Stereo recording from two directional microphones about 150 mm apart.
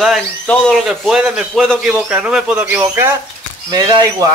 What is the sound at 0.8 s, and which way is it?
A man's voice, 5° right (ahead or behind).